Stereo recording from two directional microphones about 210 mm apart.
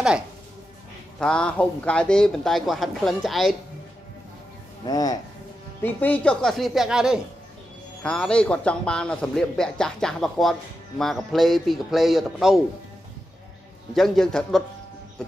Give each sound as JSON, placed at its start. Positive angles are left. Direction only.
{"t": 1.2, "sound": "a man's voice", "side_deg": 5}
{"t": 4.8, "sound": "speech", "side_deg": 20}
{"t": 5.8, "sound": "a man's voice", "side_deg": 10}
{"t": 13.9, "sound": "a man's voice", "side_deg": 0}